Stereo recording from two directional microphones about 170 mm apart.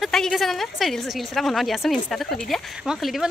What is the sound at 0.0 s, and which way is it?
A woman's voice, centre (ahead or behind).